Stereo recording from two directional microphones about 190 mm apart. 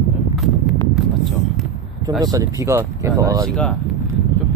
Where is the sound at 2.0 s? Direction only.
20° right (ahead or behind).